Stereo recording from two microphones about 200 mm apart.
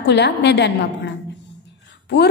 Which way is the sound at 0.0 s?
60° left (ahead or behind).